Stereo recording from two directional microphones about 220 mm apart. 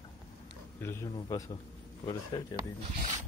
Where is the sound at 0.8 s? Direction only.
15° left (ahead or behind).